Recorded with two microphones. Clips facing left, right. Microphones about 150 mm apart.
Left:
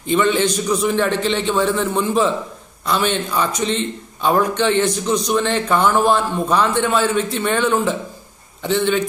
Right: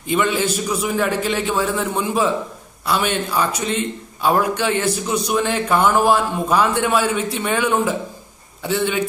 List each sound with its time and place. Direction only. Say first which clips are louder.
0.0 s a man's voice: left 3 dB; 10° right (ahead or behind)